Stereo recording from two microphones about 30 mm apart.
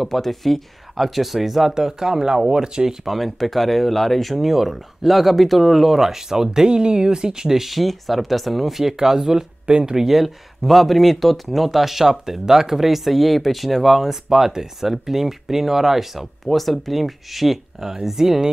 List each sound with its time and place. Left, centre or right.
0.0 s speech: centre
1.7 s speech: right
3.1 s speech: centre
4.4 s speech: centre
7.7 s speech: centre
9.9 s speech: centre